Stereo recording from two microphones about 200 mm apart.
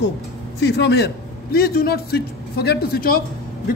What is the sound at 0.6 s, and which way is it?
A man's voice, 55° left (ahead or behind).